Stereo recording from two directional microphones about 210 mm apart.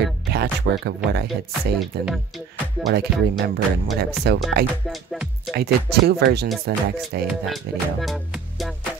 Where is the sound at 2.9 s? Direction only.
50° right (ahead or behind).